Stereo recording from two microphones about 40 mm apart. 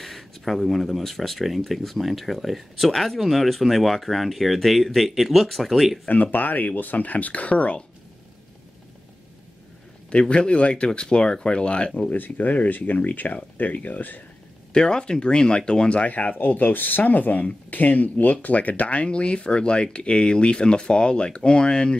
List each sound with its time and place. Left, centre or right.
0.0 s speech: centre
6.0 s speech: left
10.0 s speech: left
12.1 s speech: left
14.7 s speech: centre
15.9 s speech: left
19.0 s speech: left